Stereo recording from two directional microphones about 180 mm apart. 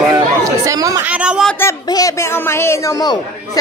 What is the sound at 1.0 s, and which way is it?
Speech, 5° right (ahead or behind).